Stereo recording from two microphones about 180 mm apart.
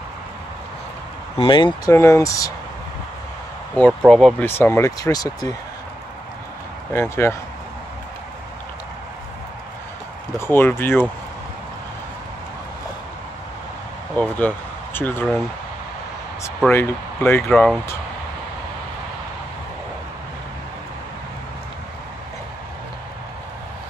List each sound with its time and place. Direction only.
1.4 s speech: 25° left (ahead or behind)
1.9 s speech: 15° left (ahead or behind)
4.1 s speech: centre (ahead or behind)
4.5 s speech: 15° left (ahead or behind)
6.9 s speech: 15° left (ahead or behind)
10.4 s speech: 15° left (ahead or behind)
14.1 s speech: 5° left (ahead or behind)
16.4 s speech: 10° left (ahead or behind)